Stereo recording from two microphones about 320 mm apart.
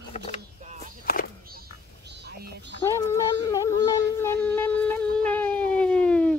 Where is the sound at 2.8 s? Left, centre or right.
Centre.